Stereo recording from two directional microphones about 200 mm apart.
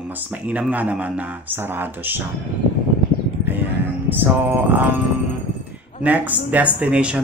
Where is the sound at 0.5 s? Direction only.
5° right (ahead or behind).